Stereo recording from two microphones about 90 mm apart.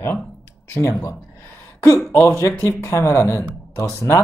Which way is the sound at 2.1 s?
30° left (ahead or behind).